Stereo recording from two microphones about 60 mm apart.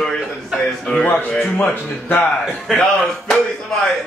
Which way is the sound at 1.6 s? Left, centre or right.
Left.